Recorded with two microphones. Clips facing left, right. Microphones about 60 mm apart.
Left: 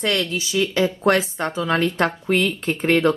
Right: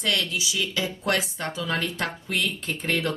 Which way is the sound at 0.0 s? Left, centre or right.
Left.